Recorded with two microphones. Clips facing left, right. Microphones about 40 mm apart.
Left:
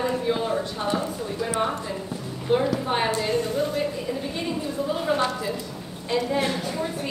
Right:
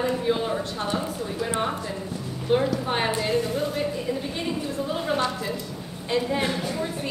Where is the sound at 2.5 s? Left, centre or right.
Centre.